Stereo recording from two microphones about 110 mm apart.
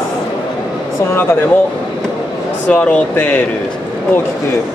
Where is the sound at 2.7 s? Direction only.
10° left (ahead or behind).